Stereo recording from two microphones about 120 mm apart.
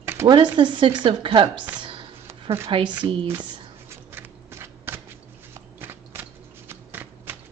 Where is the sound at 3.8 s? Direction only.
20° right (ahead or behind).